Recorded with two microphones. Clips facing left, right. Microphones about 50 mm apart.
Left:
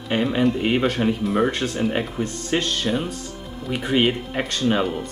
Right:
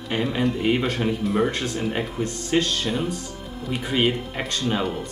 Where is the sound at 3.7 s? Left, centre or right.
Left.